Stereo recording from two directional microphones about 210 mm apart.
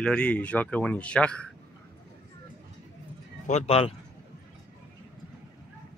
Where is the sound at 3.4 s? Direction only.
30° left (ahead or behind).